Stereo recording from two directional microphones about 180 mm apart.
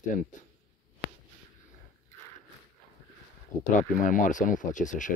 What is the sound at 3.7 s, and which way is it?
Speech, 50° left (ahead or behind).